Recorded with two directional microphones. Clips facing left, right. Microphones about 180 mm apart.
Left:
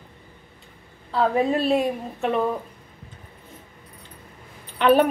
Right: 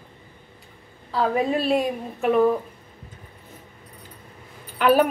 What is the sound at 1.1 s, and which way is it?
A woman's voice, centre (ahead or behind).